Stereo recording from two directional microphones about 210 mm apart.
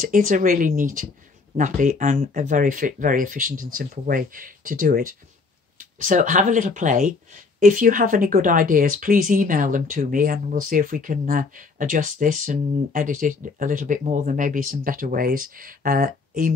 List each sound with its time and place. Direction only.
0.0 s speech: 40° right (ahead or behind)